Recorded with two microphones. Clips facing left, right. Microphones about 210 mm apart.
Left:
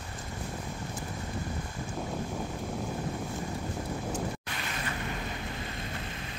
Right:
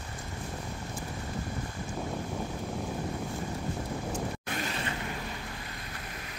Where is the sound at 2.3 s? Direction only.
Centre (ahead or behind).